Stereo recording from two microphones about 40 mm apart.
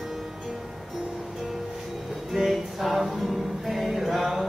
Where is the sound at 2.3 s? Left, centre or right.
Centre.